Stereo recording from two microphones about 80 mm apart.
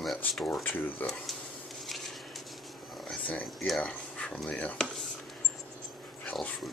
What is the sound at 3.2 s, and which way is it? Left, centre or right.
Speech, centre.